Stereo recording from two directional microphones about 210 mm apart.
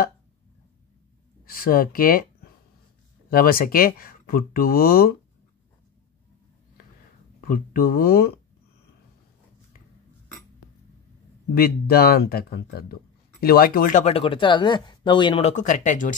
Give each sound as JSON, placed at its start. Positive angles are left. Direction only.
{"t": 1.4, "sound": "speech", "side_deg": 45}
{"t": 3.3, "sound": "speech", "side_deg": 45}
{"t": 7.3, "sound": "speech", "side_deg": 40}
{"t": 11.5, "sound": "speech", "side_deg": 45}